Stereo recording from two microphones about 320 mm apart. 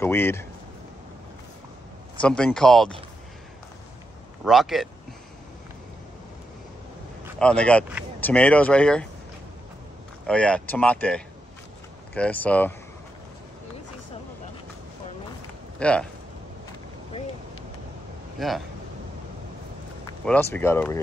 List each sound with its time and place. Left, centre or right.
0.0 s speech: centre
2.2 s speech: centre
4.5 s speech: centre
7.3 s speech: centre
10.2 s speech: centre
15.8 s speech: centre
18.4 s speech: centre
20.2 s speech: centre